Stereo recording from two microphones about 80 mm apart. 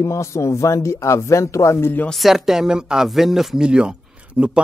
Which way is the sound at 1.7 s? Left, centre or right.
Left.